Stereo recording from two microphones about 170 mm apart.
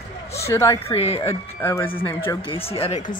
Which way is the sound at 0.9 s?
35° left (ahead or behind).